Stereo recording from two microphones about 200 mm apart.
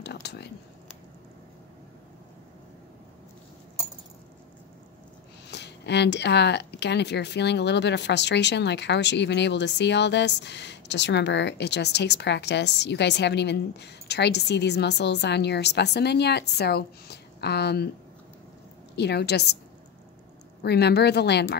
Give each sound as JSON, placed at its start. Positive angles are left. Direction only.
{"t": 0.0, "sound": "a sound", "side_deg": 55}
{"t": 5.5, "sound": "speech", "side_deg": 60}
{"t": 18.9, "sound": "speech", "side_deg": 55}
{"t": 20.6, "sound": "speech", "side_deg": 55}